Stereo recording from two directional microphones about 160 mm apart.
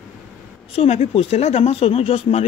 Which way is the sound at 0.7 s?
40° left (ahead or behind).